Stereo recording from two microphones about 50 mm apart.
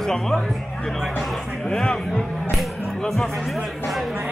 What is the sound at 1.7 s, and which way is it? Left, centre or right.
Speech, centre.